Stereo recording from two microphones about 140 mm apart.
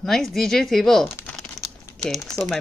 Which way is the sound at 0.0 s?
Centre (ahead or behind).